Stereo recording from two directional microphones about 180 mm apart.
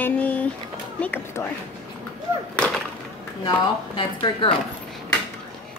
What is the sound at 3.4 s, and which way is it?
Speech, 25° left (ahead or behind).